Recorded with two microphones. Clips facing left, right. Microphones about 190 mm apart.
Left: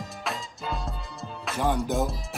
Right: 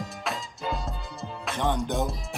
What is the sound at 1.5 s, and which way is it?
Music, 5° left (ahead or behind).